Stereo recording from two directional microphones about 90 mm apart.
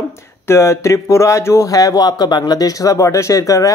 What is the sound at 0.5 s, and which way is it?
Speech, 30° left (ahead or behind).